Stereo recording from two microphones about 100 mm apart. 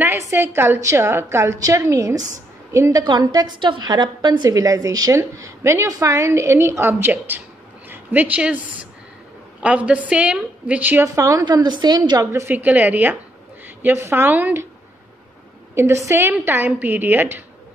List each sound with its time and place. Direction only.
0.3 s a woman's voice: 25° right (ahead or behind)
9.6 s a woman's voice: 10° right (ahead or behind)
11.1 s a woman's voice: 35° right (ahead or behind)
11.4 s a woman's voice: 50° right (ahead or behind)
12.3 s a woman's voice: 25° right (ahead or behind)
15.7 s a woman's voice: 25° right (ahead or behind)